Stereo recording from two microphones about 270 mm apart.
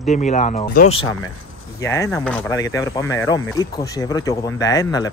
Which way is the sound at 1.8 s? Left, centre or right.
Centre.